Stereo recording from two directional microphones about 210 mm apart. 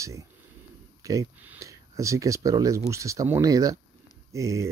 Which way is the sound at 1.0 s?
10° right (ahead or behind).